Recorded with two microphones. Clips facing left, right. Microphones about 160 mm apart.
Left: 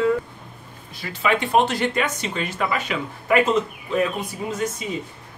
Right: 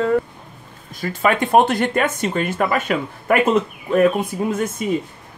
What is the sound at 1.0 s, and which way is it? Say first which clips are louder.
Speech: right 4 dB; 45° right (ahead or behind).